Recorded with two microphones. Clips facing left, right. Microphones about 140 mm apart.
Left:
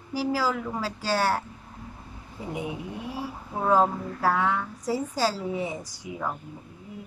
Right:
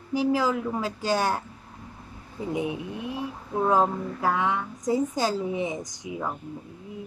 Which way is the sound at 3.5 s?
5° left (ahead or behind).